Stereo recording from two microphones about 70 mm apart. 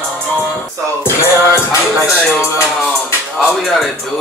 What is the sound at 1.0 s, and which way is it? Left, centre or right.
Music, left.